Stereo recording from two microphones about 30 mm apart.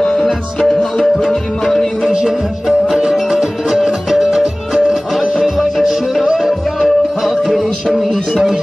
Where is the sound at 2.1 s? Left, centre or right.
Centre.